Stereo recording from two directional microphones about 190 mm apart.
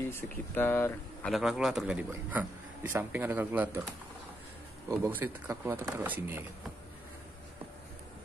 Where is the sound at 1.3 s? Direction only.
Centre (ahead or behind).